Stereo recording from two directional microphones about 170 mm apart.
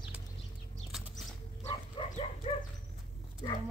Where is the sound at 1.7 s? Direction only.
30° left (ahead or behind).